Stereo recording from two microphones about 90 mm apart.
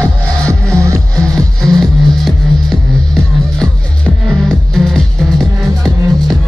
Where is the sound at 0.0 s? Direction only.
35° right (ahead or behind).